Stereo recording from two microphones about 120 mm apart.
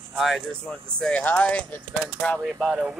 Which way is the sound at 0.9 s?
10° left (ahead or behind).